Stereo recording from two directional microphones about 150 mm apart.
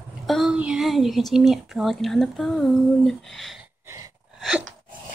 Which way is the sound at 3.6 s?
20° right (ahead or behind).